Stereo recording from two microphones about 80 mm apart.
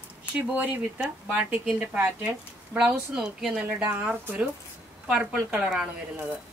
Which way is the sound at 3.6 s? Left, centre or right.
Right.